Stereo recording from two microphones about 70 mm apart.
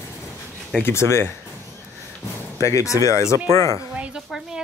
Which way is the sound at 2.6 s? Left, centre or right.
Left.